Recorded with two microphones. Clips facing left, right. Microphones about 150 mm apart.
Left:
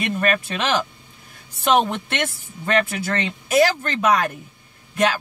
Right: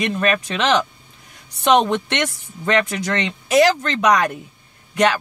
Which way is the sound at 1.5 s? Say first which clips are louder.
Right 3 dB; 75° right (ahead or behind).